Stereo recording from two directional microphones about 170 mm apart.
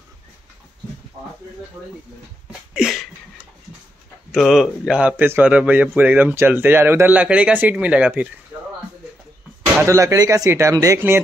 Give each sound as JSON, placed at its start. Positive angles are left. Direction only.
{"t": 2.7, "sound": "a sound", "side_deg": -5}
{"t": 4.3, "sound": "a man's voice", "side_deg": 0}
{"t": 9.8, "sound": "a man's voice", "side_deg": -20}